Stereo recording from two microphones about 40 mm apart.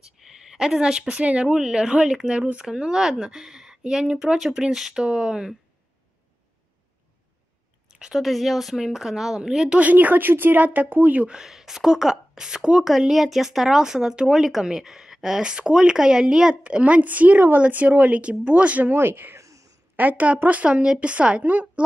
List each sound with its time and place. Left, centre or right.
0.0 s speech: centre; by 2.6 s right
2.6 s speech: centre
8.1 s speech: centre
9.8 s speech: right
11.2 s speech: centre
13.1 s speech: centre
16.6 s speech: right
18.9 s speech: right
20.0 s speech: right
20.6 s speech: right